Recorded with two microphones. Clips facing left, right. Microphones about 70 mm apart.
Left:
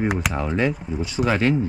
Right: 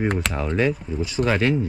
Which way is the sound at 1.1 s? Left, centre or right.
Centre.